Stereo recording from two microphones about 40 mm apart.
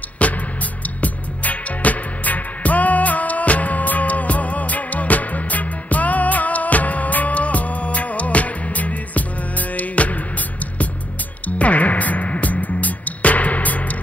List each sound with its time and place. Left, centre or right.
0.2 s music: left
11.4 s music: left